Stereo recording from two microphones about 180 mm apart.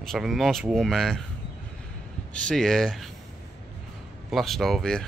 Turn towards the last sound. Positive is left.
turn(degrees=0)  # may be behind; listen again after turning